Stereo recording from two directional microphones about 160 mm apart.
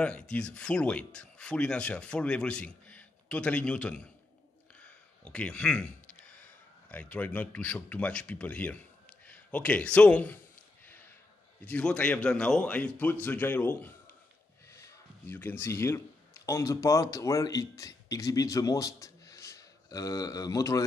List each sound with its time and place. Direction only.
0.0 s a man's voice: 5° left (ahead or behind)
11.6 s speech: 5° left (ahead or behind)